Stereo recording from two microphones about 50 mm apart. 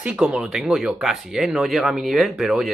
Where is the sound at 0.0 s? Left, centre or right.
Centre.